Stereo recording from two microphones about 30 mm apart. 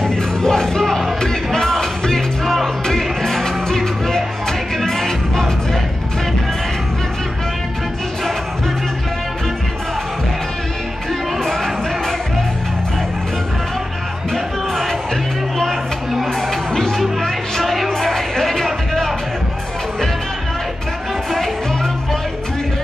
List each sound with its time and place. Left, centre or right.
0.0 s music: centre
2.4 s music: centre
11.4 s music: centre
14.3 s music: centre
16.3 s music: centre
17.2 s music: centre